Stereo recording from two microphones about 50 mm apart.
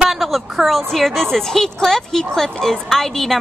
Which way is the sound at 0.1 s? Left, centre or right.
Centre.